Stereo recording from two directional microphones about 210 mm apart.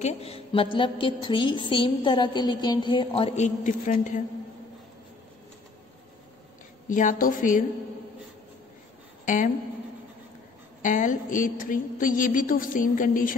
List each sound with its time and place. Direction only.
0.0 s a woman's voice: 30° left (ahead or behind)
6.9 s a woman's voice: 40° left (ahead or behind)
9.2 s a woman's voice: 35° left (ahead or behind)
10.8 s a woman's voice: 35° left (ahead or behind)